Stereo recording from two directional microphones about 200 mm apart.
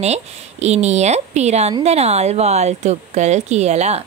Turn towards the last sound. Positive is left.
turn(degrees=-35)  # may be behind; listen again after turning